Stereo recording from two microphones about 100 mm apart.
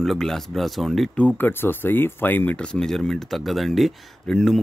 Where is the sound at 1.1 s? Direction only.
15° left (ahead or behind).